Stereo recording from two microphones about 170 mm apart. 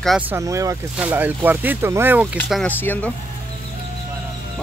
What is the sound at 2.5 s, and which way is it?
Speech, 10° left (ahead or behind).